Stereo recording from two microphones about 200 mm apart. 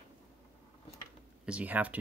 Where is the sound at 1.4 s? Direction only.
5° right (ahead or behind).